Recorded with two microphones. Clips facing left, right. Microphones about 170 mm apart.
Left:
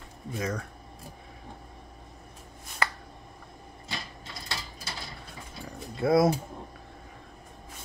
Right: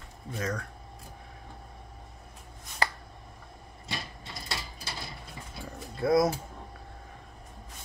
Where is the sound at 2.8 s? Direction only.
35° right (ahead or behind).